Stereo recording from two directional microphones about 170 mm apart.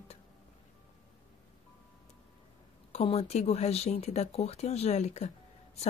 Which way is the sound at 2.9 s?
35° left (ahead or behind).